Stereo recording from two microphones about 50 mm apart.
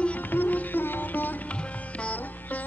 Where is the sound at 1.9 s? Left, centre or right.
Left.